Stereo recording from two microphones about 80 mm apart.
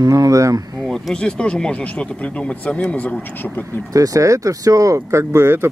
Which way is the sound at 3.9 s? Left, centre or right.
Right.